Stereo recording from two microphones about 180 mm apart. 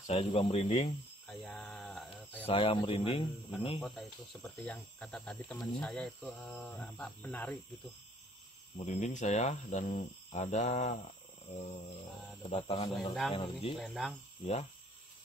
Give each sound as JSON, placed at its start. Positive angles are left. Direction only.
{"t": 0.0, "sound": "speech", "side_deg": 35}
{"t": 1.2, "sound": "a sound", "side_deg": 0}
{"t": 2.4, "sound": "speech", "side_deg": 30}
{"t": 3.8, "sound": "speech", "side_deg": 0}
{"t": 8.7, "sound": "speech", "side_deg": 40}
{"t": 12.4, "sound": "speech", "side_deg": 35}
{"t": 13.7, "sound": "speech", "side_deg": 0}
{"t": 14.4, "sound": "speech", "side_deg": 35}